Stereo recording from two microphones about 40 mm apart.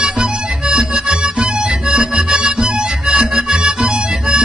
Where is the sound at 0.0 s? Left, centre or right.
Centre.